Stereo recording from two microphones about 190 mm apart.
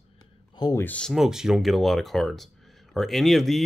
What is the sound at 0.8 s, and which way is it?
Speech, 5° left (ahead or behind).